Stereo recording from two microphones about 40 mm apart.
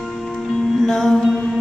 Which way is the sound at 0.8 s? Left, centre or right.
Centre.